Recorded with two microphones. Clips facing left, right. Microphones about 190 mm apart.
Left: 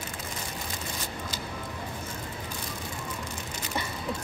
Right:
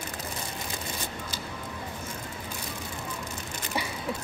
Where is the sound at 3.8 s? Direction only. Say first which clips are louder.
Right 2 dB; 10° right (ahead or behind).